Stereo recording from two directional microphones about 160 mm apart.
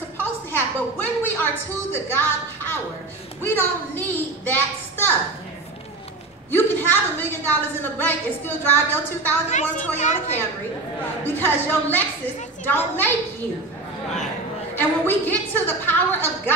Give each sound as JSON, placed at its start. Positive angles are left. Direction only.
{"t": 0.2, "sound": "a woman's voice", "side_deg": 15}
{"t": 6.5, "sound": "a woman's voice", "side_deg": 10}
{"t": 9.5, "sound": "a woman's voice", "side_deg": 50}
{"t": 11.2, "sound": "a woman's voice", "side_deg": 15}
{"t": 14.8, "sound": "a woman's voice", "side_deg": 10}